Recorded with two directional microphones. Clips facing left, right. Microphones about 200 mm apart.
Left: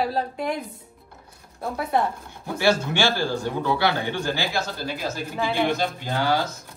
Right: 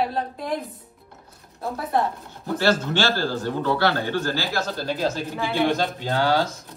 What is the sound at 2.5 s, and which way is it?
A woman's voice, 10° left (ahead or behind).